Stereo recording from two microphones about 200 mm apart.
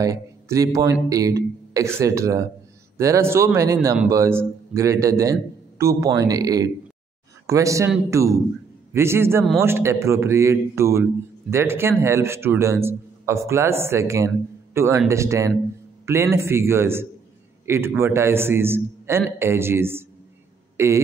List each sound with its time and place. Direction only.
0.0 s a man's voice: 15° right (ahead or behind)